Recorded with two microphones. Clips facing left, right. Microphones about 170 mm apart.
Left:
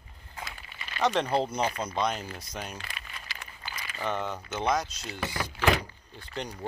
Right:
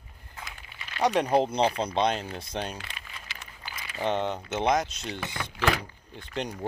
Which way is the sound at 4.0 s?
25° right (ahead or behind).